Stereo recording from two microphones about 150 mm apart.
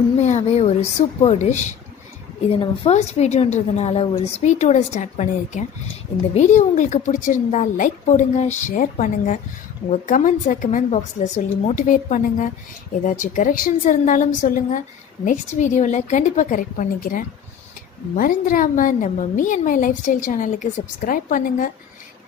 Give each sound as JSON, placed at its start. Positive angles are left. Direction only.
{"t": 0.2, "sound": "a woman's voice", "side_deg": 50}
{"t": 2.6, "sound": "a woman's voice", "side_deg": 35}